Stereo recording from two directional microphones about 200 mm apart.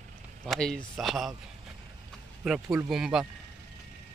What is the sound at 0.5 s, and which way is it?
Speech, 5° left (ahead or behind).